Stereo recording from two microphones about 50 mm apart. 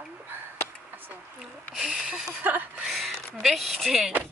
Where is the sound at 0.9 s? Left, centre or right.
Right.